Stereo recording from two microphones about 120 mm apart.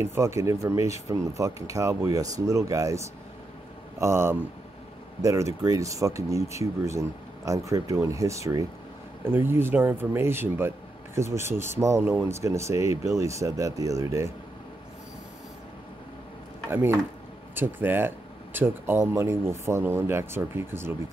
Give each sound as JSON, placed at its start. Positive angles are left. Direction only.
{"t": 0.0, "sound": "speech", "side_deg": -20}
{"t": 16.7, "sound": "speech", "side_deg": -20}